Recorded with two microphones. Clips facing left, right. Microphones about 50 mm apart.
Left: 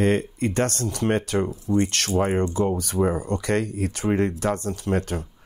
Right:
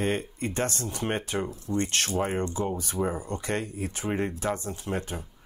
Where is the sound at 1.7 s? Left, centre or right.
Centre.